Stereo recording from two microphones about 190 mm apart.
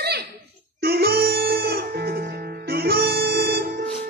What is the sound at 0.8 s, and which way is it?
Music, 55° right (ahead or behind).